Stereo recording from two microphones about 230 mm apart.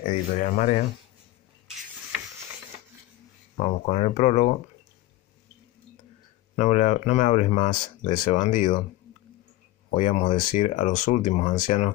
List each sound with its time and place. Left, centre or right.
0.0 s speech: left
3.5 s speech: left
6.5 s speech: left
9.8 s speech: left